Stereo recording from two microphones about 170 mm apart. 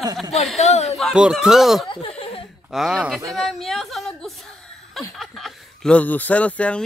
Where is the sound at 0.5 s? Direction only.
40° left (ahead or behind).